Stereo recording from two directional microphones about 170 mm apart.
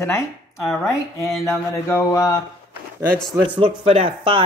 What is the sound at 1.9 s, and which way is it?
Speech, 20° left (ahead or behind).